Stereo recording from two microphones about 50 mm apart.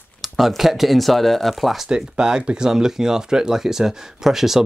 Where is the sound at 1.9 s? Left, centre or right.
Centre.